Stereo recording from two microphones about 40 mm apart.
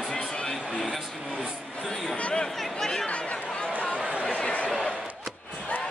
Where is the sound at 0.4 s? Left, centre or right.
Left.